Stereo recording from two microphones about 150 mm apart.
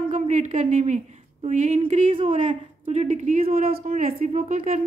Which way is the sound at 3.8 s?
50° right (ahead or behind).